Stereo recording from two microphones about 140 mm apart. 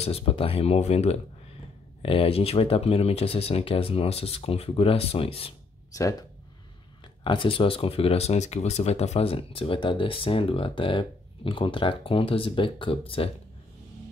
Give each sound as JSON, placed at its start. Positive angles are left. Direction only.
{"t": 0.0, "sound": "speech", "side_deg": 45}
{"t": 5.9, "sound": "speech", "side_deg": 25}
{"t": 7.2, "sound": "speech", "side_deg": 40}